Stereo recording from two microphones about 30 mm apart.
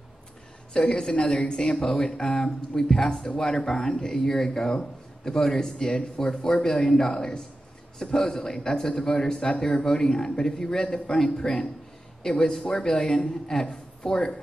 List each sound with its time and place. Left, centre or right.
0.7 s speech: left
7.2 s a man's voice: left
14.0 s speech: left